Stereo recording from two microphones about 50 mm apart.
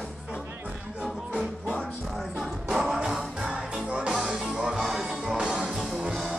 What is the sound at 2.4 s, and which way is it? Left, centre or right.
Music, centre.